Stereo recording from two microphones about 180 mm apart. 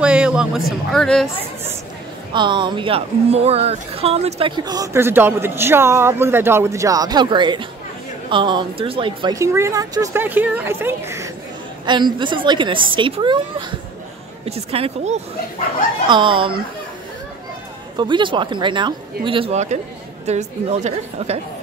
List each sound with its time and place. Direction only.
0.0 s speech: 5° right (ahead or behind)
2.3 s speech: 25° right (ahead or behind)
11.8 s a woman's voice: 25° right (ahead or behind)
17.9 s a woman's voice: 25° right (ahead or behind)